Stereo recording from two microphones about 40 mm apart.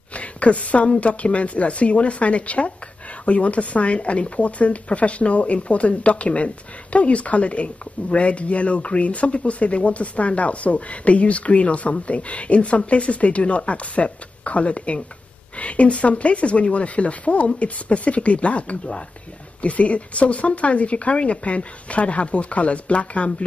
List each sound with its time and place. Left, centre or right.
0.1 s speech: left